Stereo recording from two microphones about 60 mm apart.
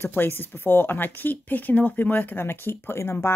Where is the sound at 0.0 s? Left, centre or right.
Left.